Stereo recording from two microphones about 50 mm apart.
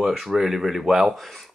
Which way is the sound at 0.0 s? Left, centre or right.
Centre.